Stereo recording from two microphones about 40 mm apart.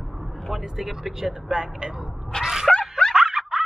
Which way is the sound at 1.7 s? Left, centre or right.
Right.